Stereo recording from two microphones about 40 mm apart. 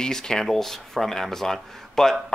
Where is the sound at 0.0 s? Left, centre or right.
Centre.